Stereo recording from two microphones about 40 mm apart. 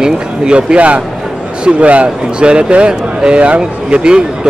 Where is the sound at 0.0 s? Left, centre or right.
Right.